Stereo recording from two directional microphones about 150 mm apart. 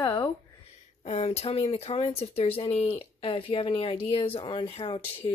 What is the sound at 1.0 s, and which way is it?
Speech, 45° left (ahead or behind).